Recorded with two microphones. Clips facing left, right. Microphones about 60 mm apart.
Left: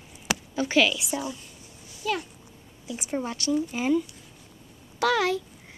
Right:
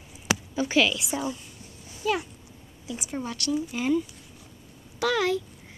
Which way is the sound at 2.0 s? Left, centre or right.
Centre.